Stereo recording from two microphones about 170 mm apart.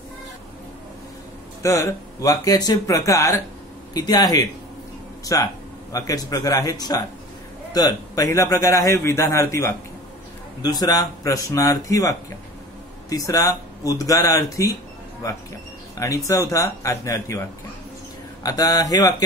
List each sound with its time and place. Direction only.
1.6 s a man's voice: 15° left (ahead or behind)
16.3 s a man's voice: 20° left (ahead or behind)